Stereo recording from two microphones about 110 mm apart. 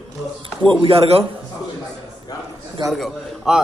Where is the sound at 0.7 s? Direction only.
60° right (ahead or behind).